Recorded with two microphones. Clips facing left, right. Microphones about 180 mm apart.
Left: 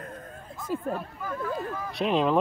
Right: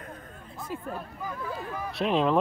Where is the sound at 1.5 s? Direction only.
Centre (ahead or behind).